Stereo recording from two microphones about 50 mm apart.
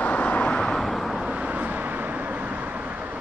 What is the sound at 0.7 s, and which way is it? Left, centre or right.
Vehicle, centre.